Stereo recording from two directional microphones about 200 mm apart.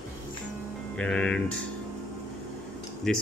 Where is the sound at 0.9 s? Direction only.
5° left (ahead or behind).